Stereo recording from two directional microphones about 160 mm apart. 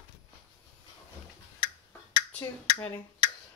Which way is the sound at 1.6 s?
25° left (ahead or behind).